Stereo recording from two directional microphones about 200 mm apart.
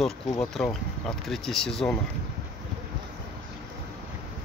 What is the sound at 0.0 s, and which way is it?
Speech, centre (ahead or behind).